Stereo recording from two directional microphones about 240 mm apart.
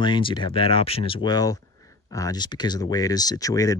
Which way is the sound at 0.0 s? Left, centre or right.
Centre.